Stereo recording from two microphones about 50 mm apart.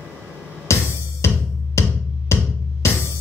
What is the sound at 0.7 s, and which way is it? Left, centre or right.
Music, left.